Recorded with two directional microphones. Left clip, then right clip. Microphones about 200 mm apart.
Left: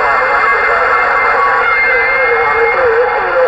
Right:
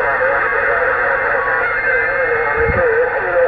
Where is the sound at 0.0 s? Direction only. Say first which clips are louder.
Left 5 dB; 40° left (ahead or behind).